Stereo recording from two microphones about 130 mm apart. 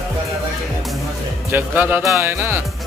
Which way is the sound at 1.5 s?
15° right (ahead or behind).